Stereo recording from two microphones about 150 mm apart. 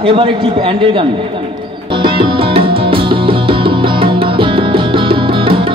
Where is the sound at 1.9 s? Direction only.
35° right (ahead or behind).